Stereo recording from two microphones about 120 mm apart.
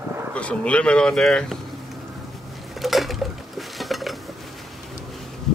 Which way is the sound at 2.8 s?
Centre (ahead or behind).